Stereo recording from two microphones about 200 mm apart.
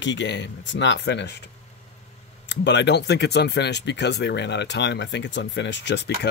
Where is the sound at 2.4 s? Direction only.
65° left (ahead or behind).